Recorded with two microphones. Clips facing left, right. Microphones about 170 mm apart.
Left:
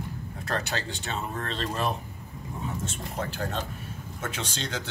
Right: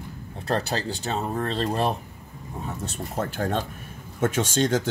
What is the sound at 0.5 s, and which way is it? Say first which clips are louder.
Speech: right 5 dB; 35° right (ahead or behind).